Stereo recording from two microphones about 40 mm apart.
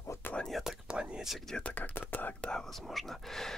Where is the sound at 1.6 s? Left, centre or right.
Left.